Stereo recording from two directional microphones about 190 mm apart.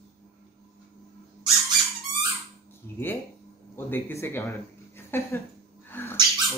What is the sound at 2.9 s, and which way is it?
A man's voice, 10° left (ahead or behind).